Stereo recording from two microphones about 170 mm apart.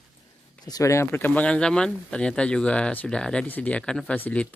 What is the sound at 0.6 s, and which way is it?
Speech, 20° left (ahead or behind).